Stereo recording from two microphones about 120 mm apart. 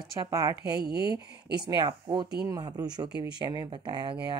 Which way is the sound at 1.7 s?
40° right (ahead or behind).